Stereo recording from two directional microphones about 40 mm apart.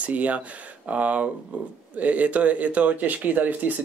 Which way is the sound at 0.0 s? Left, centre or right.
Right.